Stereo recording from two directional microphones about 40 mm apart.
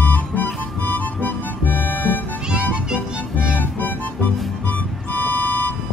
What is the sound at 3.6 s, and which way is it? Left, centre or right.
Music, left.